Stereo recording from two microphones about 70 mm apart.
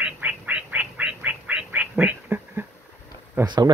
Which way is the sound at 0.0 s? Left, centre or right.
Centre.